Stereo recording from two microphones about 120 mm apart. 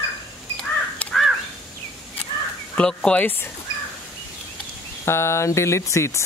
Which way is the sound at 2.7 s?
5° left (ahead or behind).